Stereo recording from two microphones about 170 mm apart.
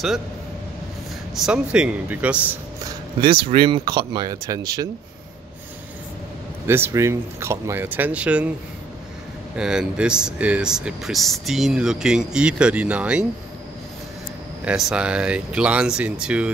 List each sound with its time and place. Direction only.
1.4 s speech: 5° right (ahead or behind)
2.8 s speech: 30° right (ahead or behind)
6.7 s speech: 15° right (ahead or behind)
9.6 s speech: 5° right (ahead or behind)
14.6 s speech: 5° right (ahead or behind)